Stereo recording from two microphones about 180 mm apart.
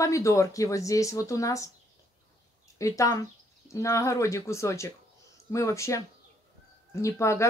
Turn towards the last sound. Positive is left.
turn(degrees=15)  # may be behind; listen again after turning